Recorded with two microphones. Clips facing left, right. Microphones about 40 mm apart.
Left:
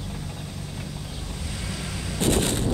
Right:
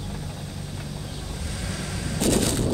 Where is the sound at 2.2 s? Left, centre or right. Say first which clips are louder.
Right 1 dB; left.